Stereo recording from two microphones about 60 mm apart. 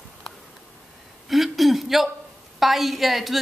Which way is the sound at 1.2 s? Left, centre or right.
Centre.